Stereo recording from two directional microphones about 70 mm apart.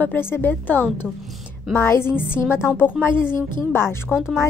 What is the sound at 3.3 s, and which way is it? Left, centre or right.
Speech, left.